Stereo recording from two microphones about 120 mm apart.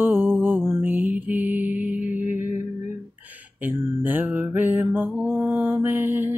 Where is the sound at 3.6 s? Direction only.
15° right (ahead or behind).